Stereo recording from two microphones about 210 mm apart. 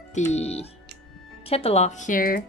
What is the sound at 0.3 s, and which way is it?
Speech, 30° left (ahead or behind).